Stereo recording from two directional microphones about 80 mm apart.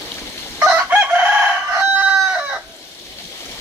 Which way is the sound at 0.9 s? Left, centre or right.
Centre.